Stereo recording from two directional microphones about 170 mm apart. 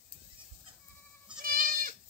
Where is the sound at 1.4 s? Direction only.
55° right (ahead or behind).